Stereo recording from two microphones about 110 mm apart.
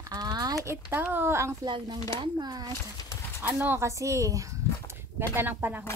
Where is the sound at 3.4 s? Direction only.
20° right (ahead or behind).